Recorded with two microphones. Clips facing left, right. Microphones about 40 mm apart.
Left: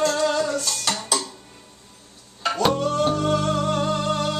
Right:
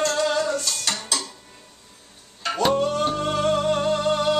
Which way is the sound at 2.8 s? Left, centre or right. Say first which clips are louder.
Left 1 dB; centre.